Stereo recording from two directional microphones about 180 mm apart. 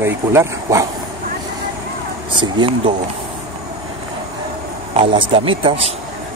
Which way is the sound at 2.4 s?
25° right (ahead or behind).